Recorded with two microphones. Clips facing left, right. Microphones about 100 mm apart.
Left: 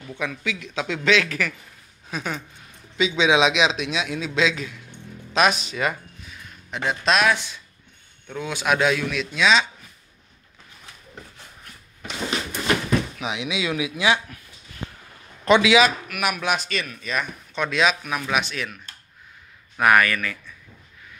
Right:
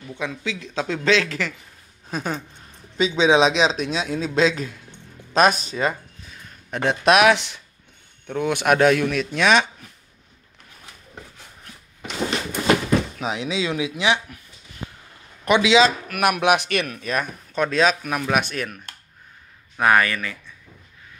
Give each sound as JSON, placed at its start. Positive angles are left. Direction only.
{"t": 0.1, "sound": "speech", "side_deg": -25}
{"t": 6.7, "sound": "speech", "side_deg": -55}
{"t": 8.3, "sound": "a man's voice", "side_deg": -60}
{"t": 13.2, "sound": "speech", "side_deg": -40}
{"t": 15.4, "sound": "speech", "side_deg": -20}
{"t": 16.1, "sound": "a man's voice", "side_deg": -55}
{"t": 17.1, "sound": "speech", "side_deg": -45}
{"t": 19.8, "sound": "speech", "side_deg": -30}